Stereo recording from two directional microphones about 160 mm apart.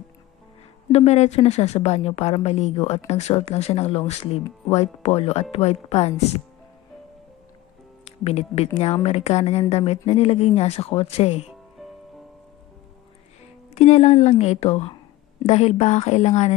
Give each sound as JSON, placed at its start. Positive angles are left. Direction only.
{"t": 0.9, "sound": "speech", "side_deg": 45}
{"t": 8.0, "sound": "speech", "side_deg": 40}
{"t": 13.7, "sound": "a woman's voice", "side_deg": 45}